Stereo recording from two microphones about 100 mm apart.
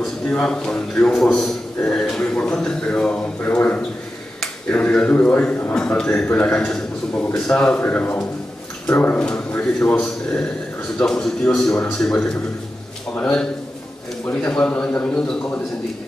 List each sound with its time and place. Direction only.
0.3 s a man's voice: 10° left (ahead or behind)